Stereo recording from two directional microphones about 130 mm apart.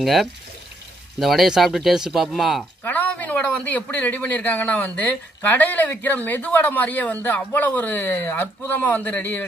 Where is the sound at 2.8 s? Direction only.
15° left (ahead or behind).